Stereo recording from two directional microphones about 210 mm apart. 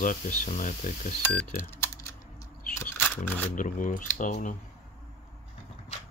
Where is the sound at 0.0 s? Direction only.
40° left (ahead or behind).